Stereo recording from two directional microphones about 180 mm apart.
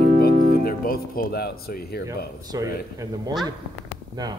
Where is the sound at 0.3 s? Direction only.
45° right (ahead or behind).